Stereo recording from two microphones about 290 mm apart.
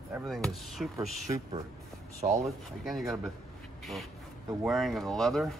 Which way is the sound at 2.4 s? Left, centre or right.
Centre.